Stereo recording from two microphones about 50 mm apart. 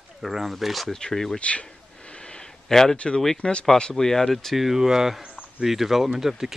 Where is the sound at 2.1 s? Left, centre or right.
Centre.